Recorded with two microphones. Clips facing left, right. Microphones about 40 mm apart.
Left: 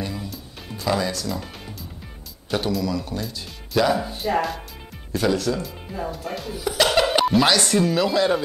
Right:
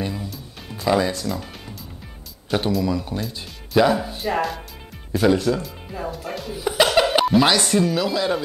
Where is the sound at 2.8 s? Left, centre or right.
Centre.